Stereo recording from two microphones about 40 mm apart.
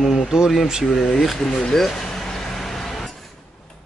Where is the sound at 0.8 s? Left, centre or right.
Centre.